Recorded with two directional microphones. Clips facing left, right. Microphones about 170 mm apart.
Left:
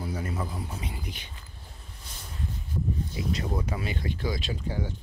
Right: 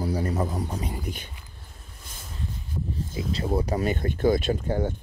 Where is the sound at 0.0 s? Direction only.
35° right (ahead or behind).